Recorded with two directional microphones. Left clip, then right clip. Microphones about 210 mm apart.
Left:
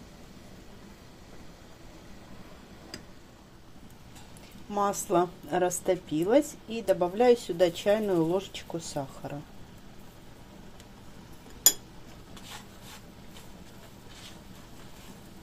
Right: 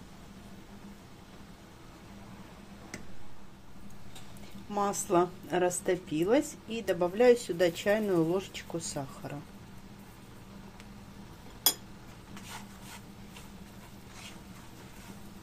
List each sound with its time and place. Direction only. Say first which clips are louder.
4.6 s a woman's voice: left 3 dB; 5° left (ahead or behind)